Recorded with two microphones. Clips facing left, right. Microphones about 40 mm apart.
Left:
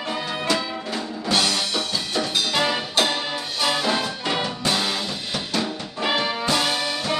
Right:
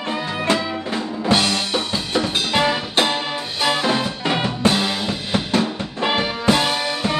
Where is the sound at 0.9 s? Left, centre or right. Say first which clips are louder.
Right 4 dB; right.